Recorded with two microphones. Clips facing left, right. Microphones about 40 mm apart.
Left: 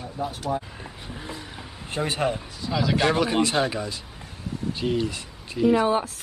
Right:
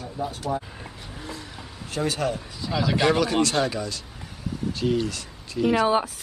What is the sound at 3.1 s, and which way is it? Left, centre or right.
Speech, centre.